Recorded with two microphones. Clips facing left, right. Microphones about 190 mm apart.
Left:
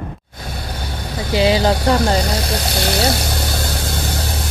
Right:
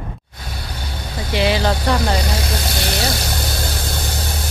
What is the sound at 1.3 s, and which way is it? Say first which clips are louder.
Speech: left 3 dB; 30° left (ahead or behind).